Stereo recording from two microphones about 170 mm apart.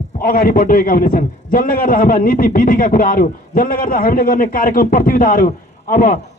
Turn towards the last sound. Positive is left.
turn(degrees=55)  # may be behind; listen again after turning